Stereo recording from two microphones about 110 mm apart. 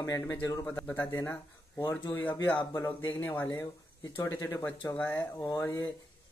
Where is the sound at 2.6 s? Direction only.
30° left (ahead or behind).